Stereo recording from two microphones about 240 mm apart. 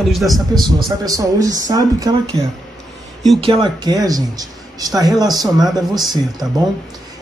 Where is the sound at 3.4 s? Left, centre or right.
Right.